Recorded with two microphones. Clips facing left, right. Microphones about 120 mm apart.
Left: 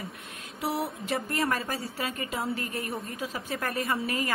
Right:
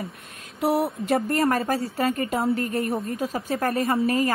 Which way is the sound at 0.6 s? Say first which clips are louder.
Right 8 dB; 55° right (ahead or behind).